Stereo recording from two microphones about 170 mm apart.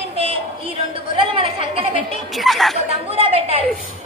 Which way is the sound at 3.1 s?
35° right (ahead or behind).